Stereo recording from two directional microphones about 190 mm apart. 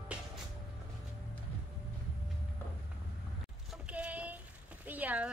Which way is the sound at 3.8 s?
5° right (ahead or behind).